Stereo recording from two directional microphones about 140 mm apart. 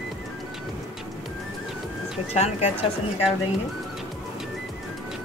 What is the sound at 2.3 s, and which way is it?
Speech, 50° left (ahead or behind).